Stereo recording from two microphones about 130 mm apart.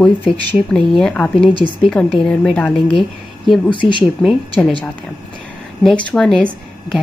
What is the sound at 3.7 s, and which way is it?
Speech, 40° left (ahead or behind).